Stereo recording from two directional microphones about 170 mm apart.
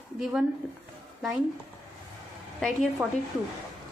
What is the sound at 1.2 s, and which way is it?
Speech, centre (ahead or behind).